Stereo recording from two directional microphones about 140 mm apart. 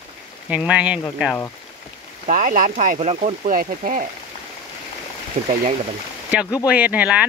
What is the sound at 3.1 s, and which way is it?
Speech, 45° right (ahead or behind).